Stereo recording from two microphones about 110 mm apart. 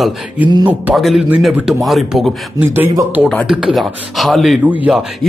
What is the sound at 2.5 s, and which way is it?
Speech, 20° right (ahead or behind).